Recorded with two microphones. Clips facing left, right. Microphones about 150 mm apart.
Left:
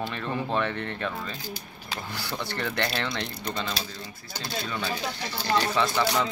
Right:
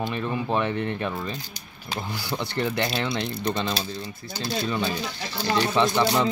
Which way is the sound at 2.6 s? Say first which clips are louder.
Right 4 dB; 15° right (ahead or behind).